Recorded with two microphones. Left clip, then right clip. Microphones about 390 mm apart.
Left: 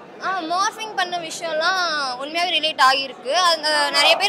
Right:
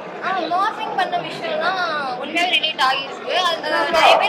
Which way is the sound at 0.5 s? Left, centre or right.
Left.